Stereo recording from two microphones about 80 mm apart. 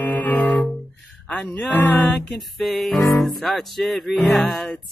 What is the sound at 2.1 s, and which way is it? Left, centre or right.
Music, centre.